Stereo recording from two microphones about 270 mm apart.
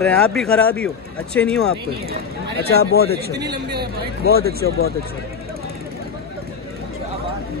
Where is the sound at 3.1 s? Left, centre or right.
Right.